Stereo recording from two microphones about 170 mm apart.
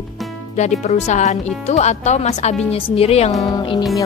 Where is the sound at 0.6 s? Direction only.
40° left (ahead or behind).